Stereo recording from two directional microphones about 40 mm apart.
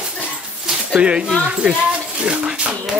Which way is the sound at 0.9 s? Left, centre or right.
Right.